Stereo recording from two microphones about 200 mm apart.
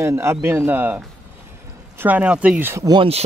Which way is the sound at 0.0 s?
15° right (ahead or behind).